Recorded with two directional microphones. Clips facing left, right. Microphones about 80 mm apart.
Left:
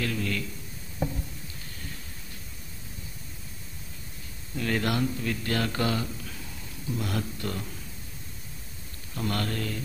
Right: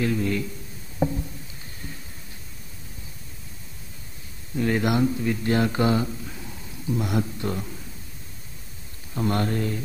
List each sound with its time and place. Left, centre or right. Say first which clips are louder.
0.0 s speech: right 6 dB; right
0.9 s a sound: right 7 dB; centre
4.6 s speech: right 5 dB; centre
9.1 s speech: right 6 dB; right